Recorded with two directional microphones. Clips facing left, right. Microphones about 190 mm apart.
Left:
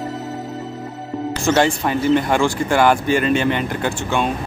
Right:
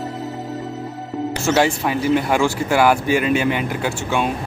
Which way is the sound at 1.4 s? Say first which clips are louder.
Left 1 dB; 5° right (ahead or behind).